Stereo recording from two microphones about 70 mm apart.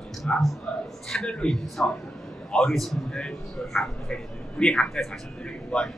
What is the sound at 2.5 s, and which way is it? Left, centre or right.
A man's voice, centre.